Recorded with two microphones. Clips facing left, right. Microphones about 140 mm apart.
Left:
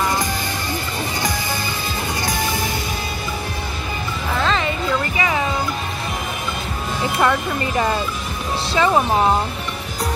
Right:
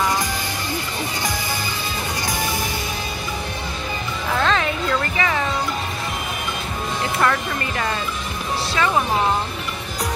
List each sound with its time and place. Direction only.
4.4 s music: centre (ahead or behind)
5.1 s music: 15° left (ahead or behind)
7.2 s speech: 15° left (ahead or behind)